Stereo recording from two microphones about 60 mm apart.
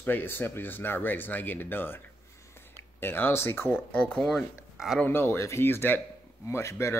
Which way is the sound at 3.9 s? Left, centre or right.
Left.